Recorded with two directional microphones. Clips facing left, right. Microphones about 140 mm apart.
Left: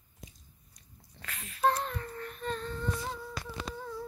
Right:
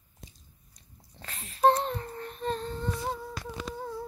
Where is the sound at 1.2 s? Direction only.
30° right (ahead or behind).